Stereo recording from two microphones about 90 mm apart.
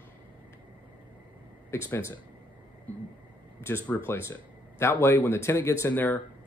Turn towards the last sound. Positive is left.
turn(degrees=20)  # may be behind; listen again after turning